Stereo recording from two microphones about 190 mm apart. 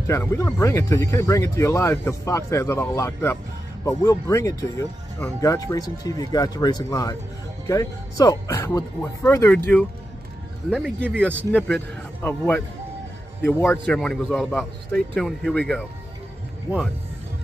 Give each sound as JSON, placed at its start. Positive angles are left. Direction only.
{"t": 0.0, "sound": "a man's voice", "side_deg": 15}
{"t": 11.1, "sound": "speech", "side_deg": -10}
{"t": 11.5, "sound": "a man's voice", "side_deg": 5}